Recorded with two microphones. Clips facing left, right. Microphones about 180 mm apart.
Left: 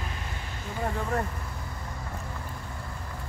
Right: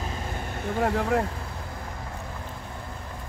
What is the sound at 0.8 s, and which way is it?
Speech, 85° right.